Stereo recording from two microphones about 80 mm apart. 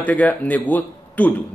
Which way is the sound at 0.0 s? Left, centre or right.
Centre.